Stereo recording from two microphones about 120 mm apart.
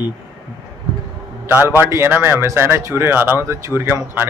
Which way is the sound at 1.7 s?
20° right (ahead or behind).